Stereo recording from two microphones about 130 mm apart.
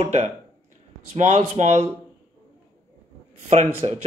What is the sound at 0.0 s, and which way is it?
Speech, 55° right (ahead or behind).